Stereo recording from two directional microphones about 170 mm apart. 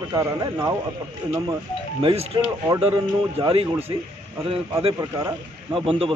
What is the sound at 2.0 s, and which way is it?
A man's voice, 35° right (ahead or behind).